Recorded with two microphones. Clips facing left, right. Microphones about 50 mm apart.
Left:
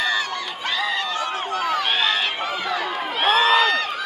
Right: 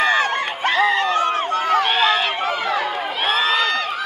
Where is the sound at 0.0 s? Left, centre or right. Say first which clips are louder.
Right 6 dB; right.